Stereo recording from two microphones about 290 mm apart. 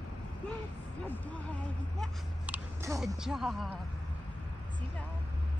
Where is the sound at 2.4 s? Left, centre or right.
Centre.